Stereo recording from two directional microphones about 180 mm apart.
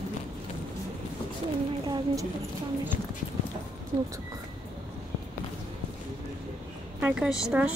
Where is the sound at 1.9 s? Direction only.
20° right (ahead or behind).